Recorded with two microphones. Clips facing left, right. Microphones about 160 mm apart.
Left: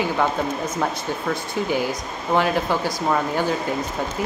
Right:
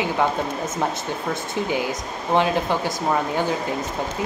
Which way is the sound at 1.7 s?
20° right (ahead or behind).